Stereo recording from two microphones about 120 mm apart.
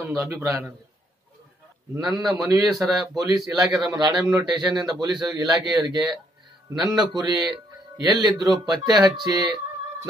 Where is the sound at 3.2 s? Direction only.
30° right (ahead or behind).